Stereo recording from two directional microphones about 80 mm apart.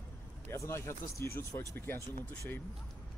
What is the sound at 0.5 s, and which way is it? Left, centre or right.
Speech, left.